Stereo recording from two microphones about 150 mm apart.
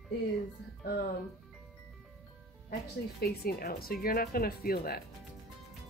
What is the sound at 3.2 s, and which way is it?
Speech, 90° left.